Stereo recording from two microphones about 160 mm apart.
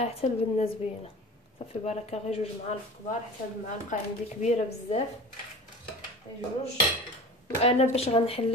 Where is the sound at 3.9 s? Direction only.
50° left (ahead or behind).